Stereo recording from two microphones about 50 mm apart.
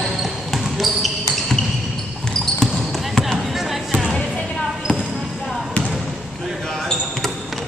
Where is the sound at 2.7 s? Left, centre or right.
Centre.